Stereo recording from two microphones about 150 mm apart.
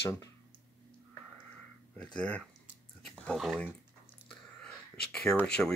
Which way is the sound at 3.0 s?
5° left (ahead or behind).